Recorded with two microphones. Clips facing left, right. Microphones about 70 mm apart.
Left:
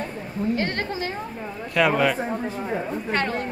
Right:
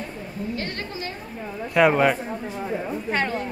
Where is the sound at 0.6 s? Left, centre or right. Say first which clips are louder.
Left 5 dB; left.